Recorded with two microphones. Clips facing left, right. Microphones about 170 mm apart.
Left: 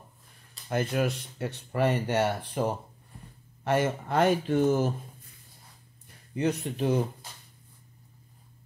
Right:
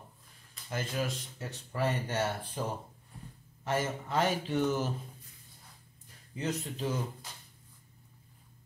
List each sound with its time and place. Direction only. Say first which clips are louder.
0.7 s speech: left 7 dB; 60° left (ahead or behind)
6.3 s speech: left 7 dB; 65° left (ahead or behind)